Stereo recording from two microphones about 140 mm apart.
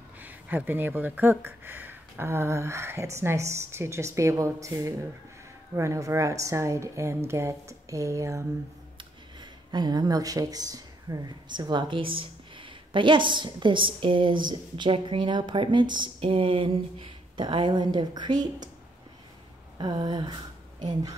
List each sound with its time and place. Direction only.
0.2 s a woman's voice: 10° right (ahead or behind); by 18.7 s 30° right (ahead or behind)
19.8 s a woman's voice: 30° right (ahead or behind)